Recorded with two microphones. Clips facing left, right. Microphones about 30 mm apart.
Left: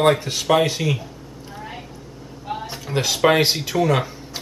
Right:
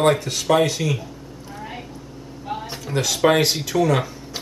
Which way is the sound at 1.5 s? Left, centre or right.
Centre.